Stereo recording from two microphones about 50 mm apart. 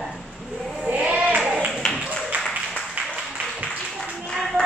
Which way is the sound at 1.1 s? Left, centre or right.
Right.